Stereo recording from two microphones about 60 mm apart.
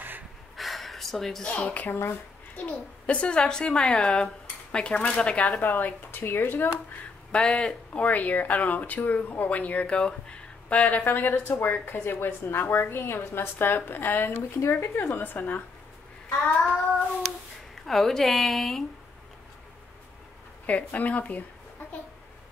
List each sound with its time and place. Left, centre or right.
0.6 s gasp: centre
1.4 s a woman's voice: centre
7.3 s a woman's voice: centre; by 15.6 s left
16.6 s a woman's voice: centre
20.6 s speech: left